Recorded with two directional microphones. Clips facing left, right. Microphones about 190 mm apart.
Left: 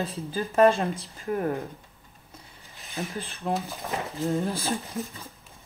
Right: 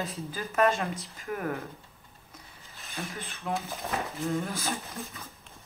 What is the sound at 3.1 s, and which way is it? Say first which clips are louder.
Speech: left 4 dB; 30° left (ahead or behind).